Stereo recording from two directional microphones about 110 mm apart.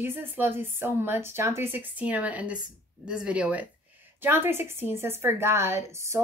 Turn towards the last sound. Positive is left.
turn(degrees=-25)  # may be behind; listen again after turning